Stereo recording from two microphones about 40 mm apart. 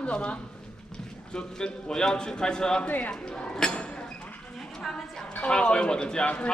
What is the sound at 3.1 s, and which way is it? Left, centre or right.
Speech, left.